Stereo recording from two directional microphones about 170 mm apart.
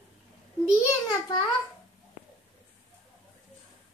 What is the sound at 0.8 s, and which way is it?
Speech, 25° left (ahead or behind).